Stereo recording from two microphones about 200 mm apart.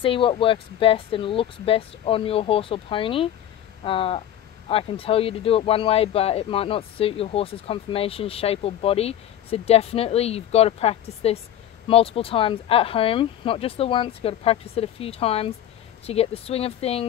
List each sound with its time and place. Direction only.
0.0 s speech: 25° left (ahead or behind)